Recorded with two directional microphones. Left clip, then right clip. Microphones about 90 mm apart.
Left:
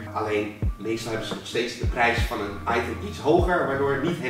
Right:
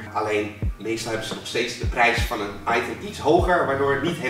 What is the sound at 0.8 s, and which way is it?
Speech, 10° left (ahead or behind).